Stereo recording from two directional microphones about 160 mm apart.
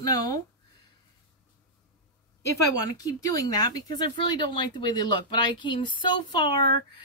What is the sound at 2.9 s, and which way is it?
Speech, 20° left (ahead or behind).